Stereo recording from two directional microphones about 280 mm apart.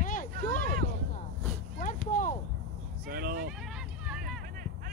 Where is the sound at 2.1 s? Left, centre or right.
Left.